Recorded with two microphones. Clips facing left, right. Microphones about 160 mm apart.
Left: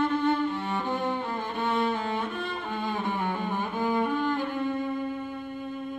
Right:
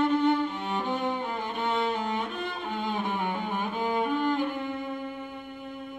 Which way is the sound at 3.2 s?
20° right (ahead or behind).